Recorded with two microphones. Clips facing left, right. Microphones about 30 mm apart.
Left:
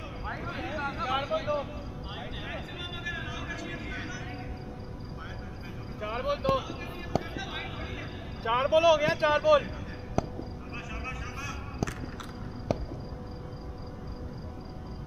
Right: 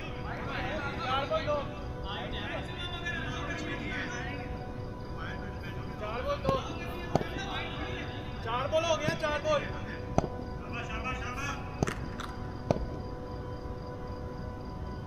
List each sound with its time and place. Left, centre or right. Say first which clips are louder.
0.4 s a sound: right 3 dB; centre
0.7 s a sound: left 2 dB; centre
1.1 s vehicle: even; centre
3.1 s vehicle: right 1 dB; centre
5.9 s vehicle: left 3 dB; centre
7.1 s fireworks: right 1 dB; centre
8.5 s speech: left 7 dB; left
10.2 s music: right 1 dB; centre
11.1 s a sound: right 3 dB; centre